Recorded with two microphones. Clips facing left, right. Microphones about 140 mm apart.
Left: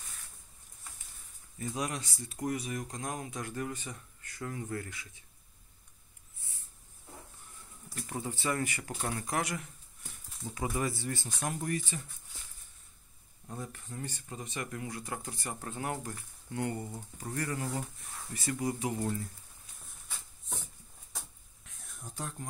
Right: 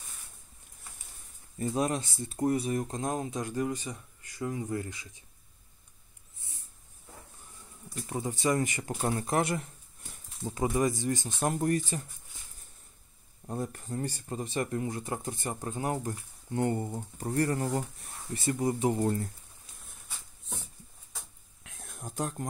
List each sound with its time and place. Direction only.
1.6 s speech: 35° right (ahead or behind)
7.9 s speech: 20° right (ahead or behind)
10.7 s speech: 15° right (ahead or behind)
11.4 s speech: 40° right (ahead or behind)
13.5 s speech: 45° right (ahead or behind)
21.6 s a sound: 70° right (ahead or behind)
22.1 s speech: 45° right (ahead or behind)